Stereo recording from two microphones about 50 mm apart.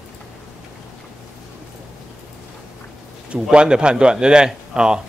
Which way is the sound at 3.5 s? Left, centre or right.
Centre.